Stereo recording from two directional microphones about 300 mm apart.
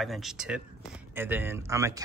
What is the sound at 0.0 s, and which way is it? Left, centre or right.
Speech, centre.